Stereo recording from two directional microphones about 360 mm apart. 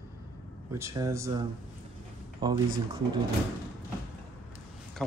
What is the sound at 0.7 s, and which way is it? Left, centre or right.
Speech, centre.